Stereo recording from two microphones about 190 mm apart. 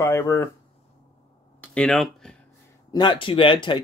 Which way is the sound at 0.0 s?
15° left (ahead or behind).